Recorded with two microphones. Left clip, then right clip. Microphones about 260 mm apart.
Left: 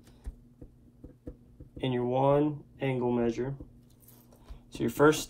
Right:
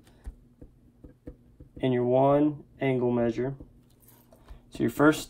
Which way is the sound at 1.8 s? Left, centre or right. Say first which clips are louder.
Right 5 dB; right.